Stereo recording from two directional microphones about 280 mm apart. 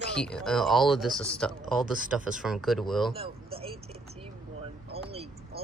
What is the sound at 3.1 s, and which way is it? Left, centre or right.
Speech, centre.